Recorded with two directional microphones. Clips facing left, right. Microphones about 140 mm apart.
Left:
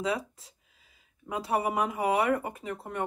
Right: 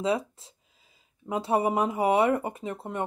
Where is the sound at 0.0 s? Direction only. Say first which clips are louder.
Right 4 dB; 25° right (ahead or behind).